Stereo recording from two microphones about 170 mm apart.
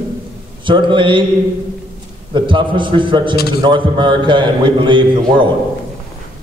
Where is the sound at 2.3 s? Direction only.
30° right (ahead or behind).